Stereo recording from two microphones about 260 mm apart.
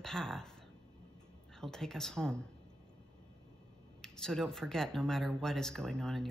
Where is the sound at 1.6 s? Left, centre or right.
Centre.